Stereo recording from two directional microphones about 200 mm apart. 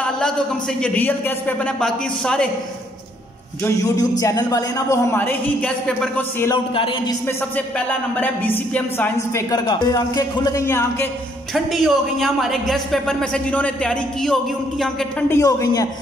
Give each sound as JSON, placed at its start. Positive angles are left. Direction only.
{"t": 0.7, "sound": "a man's voice", "side_deg": 5}
{"t": 3.6, "sound": "speech", "side_deg": 15}
{"t": 6.5, "sound": "speech", "side_deg": 25}
{"t": 7.2, "sound": "speech", "side_deg": 10}
{"t": 11.5, "sound": "a man's voice", "side_deg": 0}
{"t": 15.2, "sound": "speech", "side_deg": 15}